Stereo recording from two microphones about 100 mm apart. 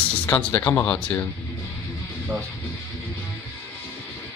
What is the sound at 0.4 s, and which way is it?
Speech, 20° left (ahead or behind).